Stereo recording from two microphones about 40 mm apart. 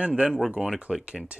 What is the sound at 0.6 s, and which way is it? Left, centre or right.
Speech, centre.